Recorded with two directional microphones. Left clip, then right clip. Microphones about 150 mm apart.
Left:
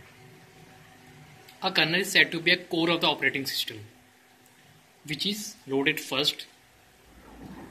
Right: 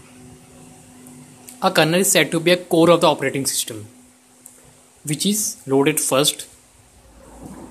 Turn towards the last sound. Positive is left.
turn(degrees=-35)  # may be behind; listen again after turning